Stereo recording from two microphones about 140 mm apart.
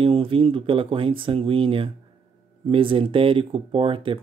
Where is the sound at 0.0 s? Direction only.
40° right (ahead or behind).